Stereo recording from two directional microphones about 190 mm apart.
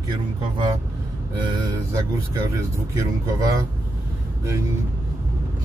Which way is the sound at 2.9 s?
20° right (ahead or behind).